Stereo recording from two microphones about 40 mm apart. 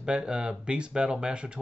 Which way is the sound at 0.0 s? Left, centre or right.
Right.